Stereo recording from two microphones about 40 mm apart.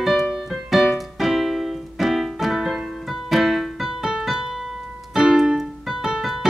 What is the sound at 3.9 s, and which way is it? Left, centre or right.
Music, centre.